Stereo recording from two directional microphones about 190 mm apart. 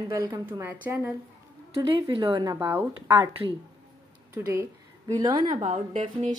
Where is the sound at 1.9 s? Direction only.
25° right (ahead or behind).